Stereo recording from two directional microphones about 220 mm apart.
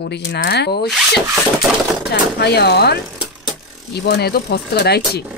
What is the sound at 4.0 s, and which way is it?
Speech, 45° left (ahead or behind).